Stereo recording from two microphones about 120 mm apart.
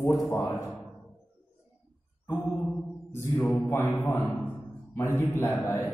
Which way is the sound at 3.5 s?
25° left (ahead or behind).